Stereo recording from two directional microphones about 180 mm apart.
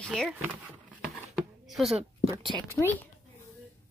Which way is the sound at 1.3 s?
Centre (ahead or behind).